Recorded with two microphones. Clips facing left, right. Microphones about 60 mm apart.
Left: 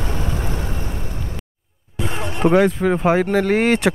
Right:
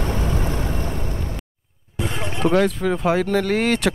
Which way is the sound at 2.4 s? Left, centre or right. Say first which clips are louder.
Left 3 dB; centre.